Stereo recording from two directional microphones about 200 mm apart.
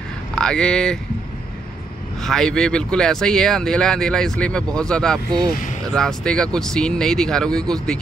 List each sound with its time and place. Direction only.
0.4 s speech: 5° left (ahead or behind)
2.2 s speech: 5° left (ahead or behind)
5.5 s speech: 40° left (ahead or behind)
5.9 s speech: 5° left (ahead or behind)